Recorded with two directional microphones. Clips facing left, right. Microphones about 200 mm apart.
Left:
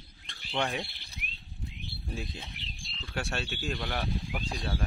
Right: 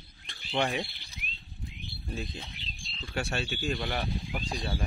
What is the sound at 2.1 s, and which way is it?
Speech, 5° left (ahead or behind).